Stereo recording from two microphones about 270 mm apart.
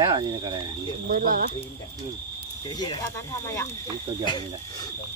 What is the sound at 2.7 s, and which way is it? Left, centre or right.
Speech, centre.